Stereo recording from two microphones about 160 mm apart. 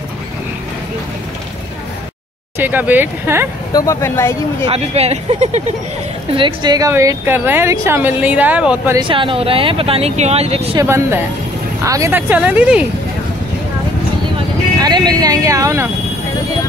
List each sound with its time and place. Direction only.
2.6 s speech: 10° right (ahead or behind)
3.7 s speech: 20° left (ahead or behind)
4.6 s speech: 40° right (ahead or behind)
6.3 s speech: 30° right (ahead or behind); by 8.9 s 10° right (ahead or behind)
8.9 s speech: 30° right (ahead or behind)
10.8 s speech: 15° right (ahead or behind)
14.8 s speech: 25° right (ahead or behind)